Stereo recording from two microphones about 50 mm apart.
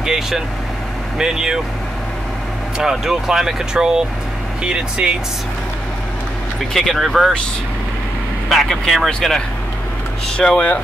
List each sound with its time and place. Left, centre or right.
0.0 s speech: centre
2.8 s speech: centre
6.7 s speech: centre
8.5 s speech: centre